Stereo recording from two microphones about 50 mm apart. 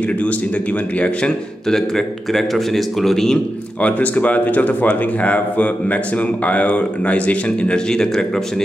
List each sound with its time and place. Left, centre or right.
0.9 s speech: left
1.7 s speech: centre
3.8 s speech: left
7.9 s speech: centre